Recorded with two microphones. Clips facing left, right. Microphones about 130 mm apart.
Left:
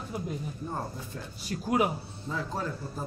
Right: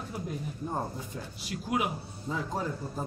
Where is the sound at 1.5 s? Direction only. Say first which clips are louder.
Left 4 dB; 40° left (ahead or behind).